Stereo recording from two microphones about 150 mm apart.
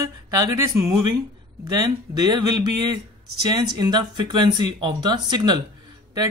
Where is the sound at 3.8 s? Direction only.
30° right (ahead or behind).